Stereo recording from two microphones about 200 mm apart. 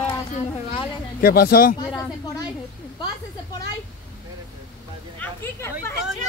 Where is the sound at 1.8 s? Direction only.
20° left (ahead or behind).